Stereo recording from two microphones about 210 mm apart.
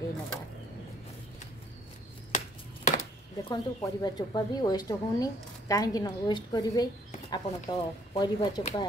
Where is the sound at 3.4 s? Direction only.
20° left (ahead or behind).